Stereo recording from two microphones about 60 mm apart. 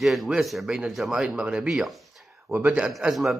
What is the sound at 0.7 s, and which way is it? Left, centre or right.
A man's voice, centre.